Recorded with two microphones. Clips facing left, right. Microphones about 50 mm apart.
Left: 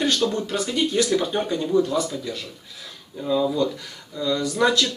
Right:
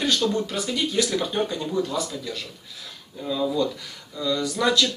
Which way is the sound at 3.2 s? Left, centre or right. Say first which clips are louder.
Left 3 dB; centre.